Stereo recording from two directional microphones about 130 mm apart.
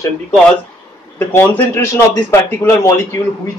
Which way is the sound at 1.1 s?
15° left (ahead or behind).